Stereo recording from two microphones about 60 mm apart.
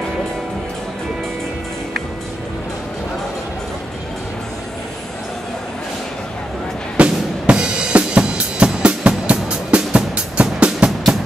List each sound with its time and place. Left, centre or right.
7.0 s drum: centre